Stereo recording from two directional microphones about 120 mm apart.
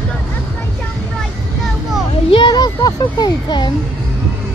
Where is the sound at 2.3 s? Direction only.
35° left (ahead or behind).